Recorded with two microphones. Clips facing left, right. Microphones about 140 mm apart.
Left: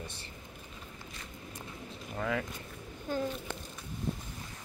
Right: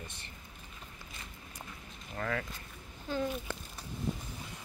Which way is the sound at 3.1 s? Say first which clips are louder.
Left 1 dB; 50° left (ahead or behind).